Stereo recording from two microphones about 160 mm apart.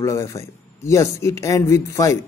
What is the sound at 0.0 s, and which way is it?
Speech, 20° left (ahead or behind).